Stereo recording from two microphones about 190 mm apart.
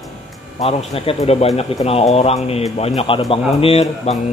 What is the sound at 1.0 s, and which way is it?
Speech, 30° left (ahead or behind).